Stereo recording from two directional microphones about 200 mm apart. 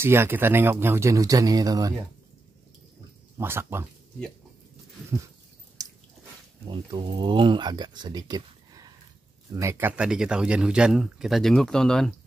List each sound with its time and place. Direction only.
0.0 s speech: 10° right (ahead or behind)
3.3 s speech: 10° right (ahead or behind)
6.7 s speech: 20° right (ahead or behind); by 12.1 s 5° left (ahead or behind)